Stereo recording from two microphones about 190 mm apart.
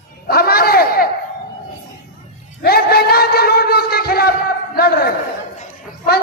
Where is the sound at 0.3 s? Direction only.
55° left (ahead or behind).